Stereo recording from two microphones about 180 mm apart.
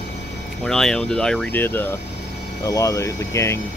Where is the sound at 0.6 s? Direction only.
5° left (ahead or behind).